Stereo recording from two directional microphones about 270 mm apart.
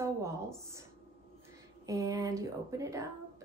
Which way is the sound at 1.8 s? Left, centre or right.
Centre.